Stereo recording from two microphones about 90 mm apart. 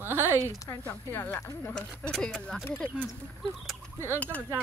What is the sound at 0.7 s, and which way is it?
Speech, 25° left (ahead or behind).